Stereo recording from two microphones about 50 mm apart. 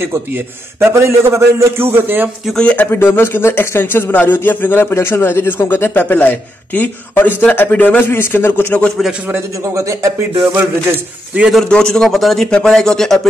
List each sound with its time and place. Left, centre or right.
0.0 s a man's voice: right
1.8 s a man's voice: right
2.6 s a man's voice: left
2.9 s a man's voice: left
4.9 s a man's voice: left
7.7 s a man's voice: left
8.0 s a man's voice: left
10.4 s a man's voice: right
11.3 s speech: right
11.7 s a man's voice: centre
12.4 s a man's voice: centre